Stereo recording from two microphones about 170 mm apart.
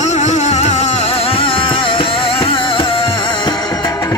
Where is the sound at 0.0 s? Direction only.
45° left (ahead or behind).